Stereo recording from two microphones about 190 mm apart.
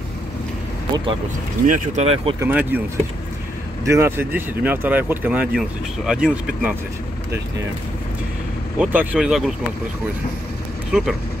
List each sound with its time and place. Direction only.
1.7 s speech: 35° right (ahead or behind)
2.4 s speech: 10° right (ahead or behind)
3.8 s speech: 15° right (ahead or behind)
8.7 s speech: 5° right (ahead or behind)
10.9 s speech: 5° right (ahead or behind)